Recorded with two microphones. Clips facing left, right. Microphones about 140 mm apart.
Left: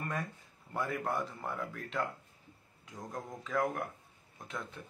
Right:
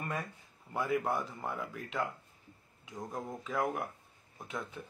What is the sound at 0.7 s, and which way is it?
Speech, centre (ahead or behind).